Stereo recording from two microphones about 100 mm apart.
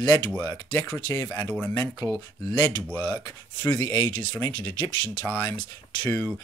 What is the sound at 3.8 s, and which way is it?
Speech, 45° left (ahead or behind).